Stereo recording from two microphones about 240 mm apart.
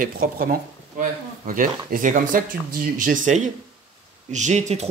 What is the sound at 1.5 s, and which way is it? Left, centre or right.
Speech, right.